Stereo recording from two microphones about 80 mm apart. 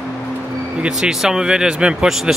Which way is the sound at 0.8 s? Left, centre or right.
Centre.